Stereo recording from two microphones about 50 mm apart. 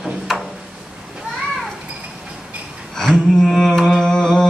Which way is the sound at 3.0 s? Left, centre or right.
Centre.